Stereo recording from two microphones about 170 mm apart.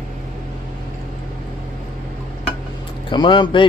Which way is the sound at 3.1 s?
25° left (ahead or behind).